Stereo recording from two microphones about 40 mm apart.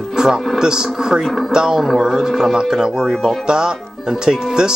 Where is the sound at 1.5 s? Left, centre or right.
Centre.